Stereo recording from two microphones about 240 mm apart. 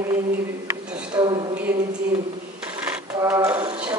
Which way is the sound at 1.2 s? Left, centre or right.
Centre.